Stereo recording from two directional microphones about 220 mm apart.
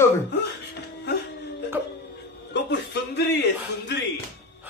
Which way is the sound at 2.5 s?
50° left (ahead or behind).